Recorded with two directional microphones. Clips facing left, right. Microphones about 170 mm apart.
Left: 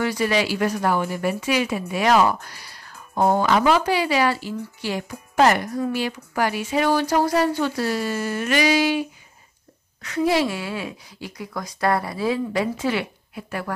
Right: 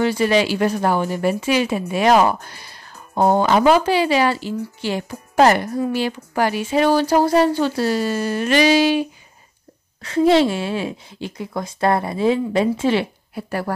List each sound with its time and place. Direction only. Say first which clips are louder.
0.0 s speech: right 4 dB; 25° right (ahead or behind)
10.0 s speech: right 6 dB; 25° right (ahead or behind)
13.3 s speech: right 4 dB; 40° right (ahead or behind)